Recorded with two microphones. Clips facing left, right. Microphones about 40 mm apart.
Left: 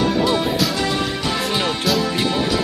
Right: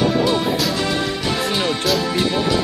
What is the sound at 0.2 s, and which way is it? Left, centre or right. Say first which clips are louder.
Music: even; centre.